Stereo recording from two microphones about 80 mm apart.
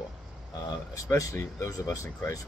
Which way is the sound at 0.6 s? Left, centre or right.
Left.